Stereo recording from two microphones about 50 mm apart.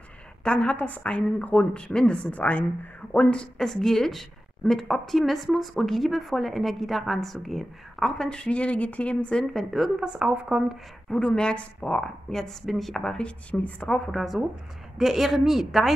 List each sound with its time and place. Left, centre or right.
0.4 s speech: centre
2.3 s speech: left
3.1 s speech: left
3.5 s a woman's voice: centre
8.3 s speech: left
9.5 s speech: centre
10.0 s a woman's voice: right
11.1 s speech: centre
12.3 s a woman's voice: centre
13.0 s speech: centre
13.5 s speech: left
13.8 s a woman's voice: centre